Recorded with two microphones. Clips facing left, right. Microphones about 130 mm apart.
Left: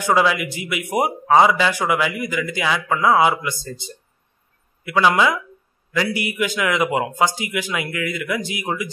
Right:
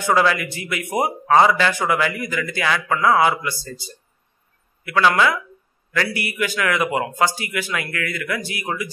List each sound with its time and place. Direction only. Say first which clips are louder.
0.0 s a man's voice: even; 15° left (ahead or behind)